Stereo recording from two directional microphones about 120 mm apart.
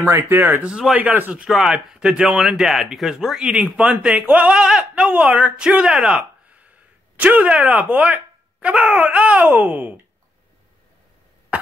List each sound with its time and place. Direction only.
0.0 s speech: 15° right (ahead or behind)